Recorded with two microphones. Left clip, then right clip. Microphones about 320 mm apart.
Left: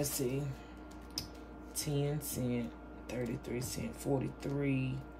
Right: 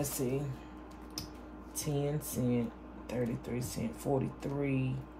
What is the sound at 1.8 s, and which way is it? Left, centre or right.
Speech, centre.